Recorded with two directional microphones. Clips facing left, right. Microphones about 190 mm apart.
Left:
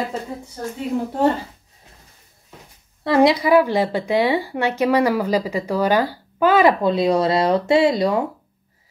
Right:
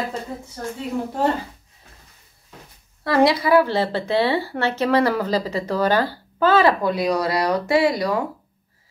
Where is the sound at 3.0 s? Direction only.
20° left (ahead or behind).